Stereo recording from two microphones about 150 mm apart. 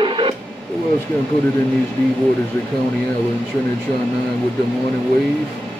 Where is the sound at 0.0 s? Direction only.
35° right (ahead or behind).